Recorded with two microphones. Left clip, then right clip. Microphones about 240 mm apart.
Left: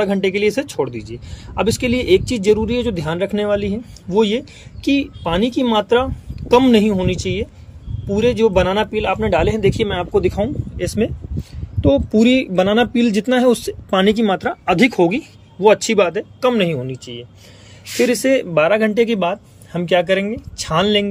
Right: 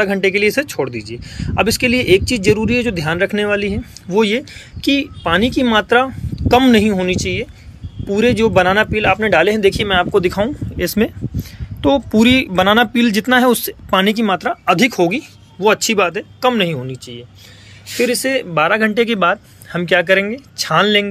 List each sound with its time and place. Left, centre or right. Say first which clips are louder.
0.0 s speech: right 3 dB; centre
9.6 s speech: right 3 dB; right
9.9 s speech: right 4 dB; centre